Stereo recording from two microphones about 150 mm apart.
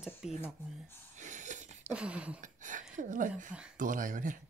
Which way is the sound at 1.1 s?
55° right (ahead or behind).